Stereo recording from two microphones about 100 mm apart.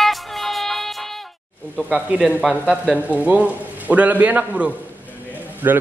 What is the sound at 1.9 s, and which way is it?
A man's voice, 10° right (ahead or behind).